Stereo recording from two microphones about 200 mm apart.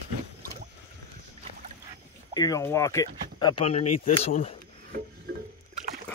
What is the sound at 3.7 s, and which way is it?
Speech, 35° left (ahead or behind).